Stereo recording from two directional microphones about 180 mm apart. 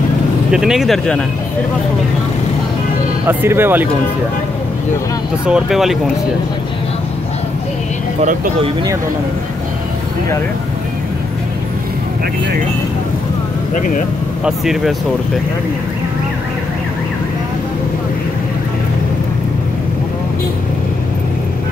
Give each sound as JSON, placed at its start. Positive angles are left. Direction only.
{"t": 0.5, "sound": "speech", "side_deg": -5}
{"t": 3.3, "sound": "speech", "side_deg": -10}
{"t": 5.5, "sound": "speech", "side_deg": 0}
{"t": 8.2, "sound": "speech", "side_deg": -40}
{"t": 13.7, "sound": "speech", "side_deg": 45}
{"t": 14.4, "sound": "speech", "side_deg": 0}